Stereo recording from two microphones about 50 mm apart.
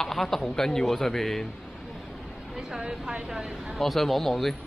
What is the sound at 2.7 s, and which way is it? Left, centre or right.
Speech, centre.